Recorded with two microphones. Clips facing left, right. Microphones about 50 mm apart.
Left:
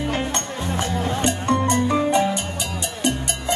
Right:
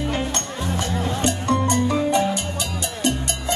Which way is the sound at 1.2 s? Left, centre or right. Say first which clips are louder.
Even; left.